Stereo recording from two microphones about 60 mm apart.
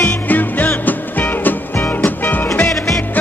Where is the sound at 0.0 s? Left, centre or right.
Left.